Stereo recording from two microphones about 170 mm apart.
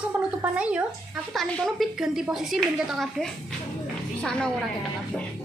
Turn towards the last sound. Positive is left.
turn(degrees=5)  # may be behind; listen again after turning